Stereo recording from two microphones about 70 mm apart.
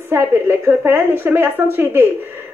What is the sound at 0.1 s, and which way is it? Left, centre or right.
A woman's voice, right.